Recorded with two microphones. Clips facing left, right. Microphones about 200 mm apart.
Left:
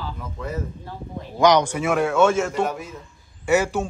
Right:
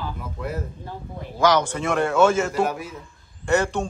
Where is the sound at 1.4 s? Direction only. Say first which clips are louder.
Left 3 dB; 20° left (ahead or behind).